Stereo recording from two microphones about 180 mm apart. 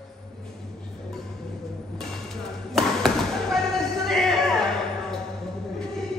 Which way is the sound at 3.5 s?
Centre (ahead or behind).